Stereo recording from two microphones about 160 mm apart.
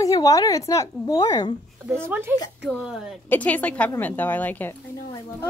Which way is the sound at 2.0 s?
15° right (ahead or behind).